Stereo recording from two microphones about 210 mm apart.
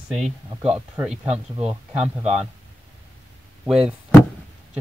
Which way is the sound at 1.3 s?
30° right (ahead or behind).